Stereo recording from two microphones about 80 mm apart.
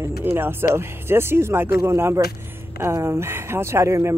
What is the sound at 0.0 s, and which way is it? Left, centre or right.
Speech, right.